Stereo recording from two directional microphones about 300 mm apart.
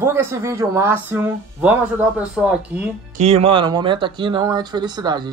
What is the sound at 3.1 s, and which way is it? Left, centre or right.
Speech, right.